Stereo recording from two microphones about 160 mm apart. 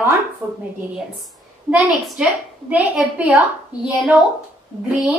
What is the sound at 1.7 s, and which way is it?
A woman's voice, 5° right (ahead or behind).